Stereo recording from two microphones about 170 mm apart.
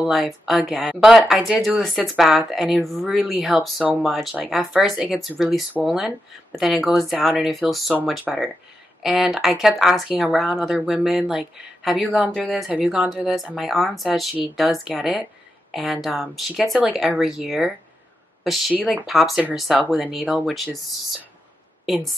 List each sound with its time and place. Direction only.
0.0 s speech: centre (ahead or behind)
16.1 s speech: 10° right (ahead or behind)